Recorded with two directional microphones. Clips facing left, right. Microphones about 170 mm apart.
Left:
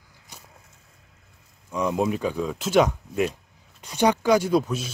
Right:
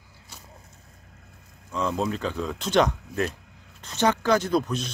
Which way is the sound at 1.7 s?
15° left (ahead or behind).